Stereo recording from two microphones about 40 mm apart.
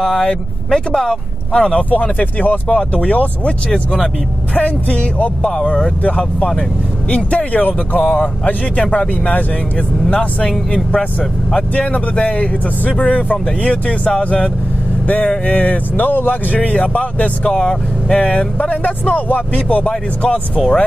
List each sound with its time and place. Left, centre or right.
0.0 s speech: left
1.9 s speech: left
5.6 s speech: centre
7.2 s speech: left
16.5 s speech: left
17.5 s speech: centre
18.1 s speech: left
20.2 s speech: left